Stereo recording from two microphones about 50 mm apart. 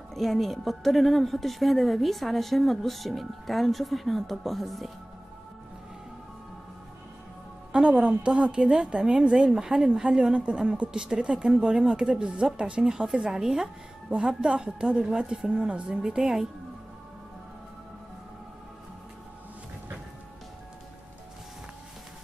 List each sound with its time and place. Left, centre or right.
0.1 s a woman's voice: centre
7.7 s a woman's voice: right